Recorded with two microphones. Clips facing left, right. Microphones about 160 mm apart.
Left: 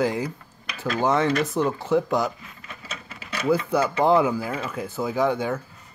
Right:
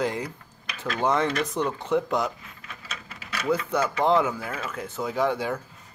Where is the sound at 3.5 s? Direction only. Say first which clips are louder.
Left 3 dB; 5° left (ahead or behind).